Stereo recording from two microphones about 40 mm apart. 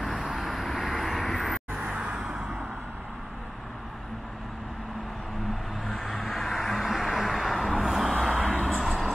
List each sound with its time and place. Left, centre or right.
0.4 s vehicle: centre
1.9 s vehicle: centre
5.9 s vehicle: centre